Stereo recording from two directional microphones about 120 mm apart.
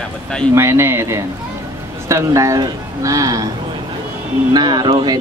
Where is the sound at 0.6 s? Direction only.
20° right (ahead or behind).